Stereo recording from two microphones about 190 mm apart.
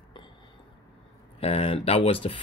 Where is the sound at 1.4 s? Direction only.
30° left (ahead or behind).